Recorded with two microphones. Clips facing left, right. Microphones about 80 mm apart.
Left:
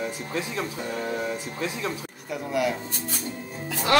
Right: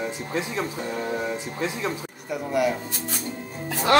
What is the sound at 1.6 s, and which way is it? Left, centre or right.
Speech, right.